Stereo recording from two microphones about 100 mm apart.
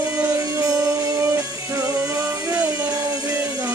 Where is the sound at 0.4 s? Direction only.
35° right (ahead or behind).